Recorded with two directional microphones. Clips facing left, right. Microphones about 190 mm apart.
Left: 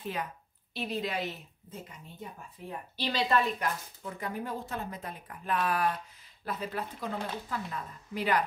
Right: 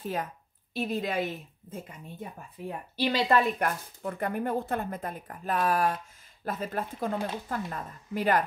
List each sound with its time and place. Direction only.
0.0 s a woman's voice: 45° right (ahead or behind)